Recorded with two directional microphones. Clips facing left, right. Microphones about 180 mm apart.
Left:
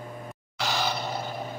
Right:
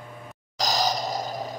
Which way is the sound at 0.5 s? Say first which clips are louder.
Right 4 dB; 40° right (ahead or behind).